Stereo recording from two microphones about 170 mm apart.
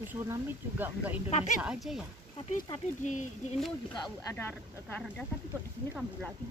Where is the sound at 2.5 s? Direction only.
45° left (ahead or behind).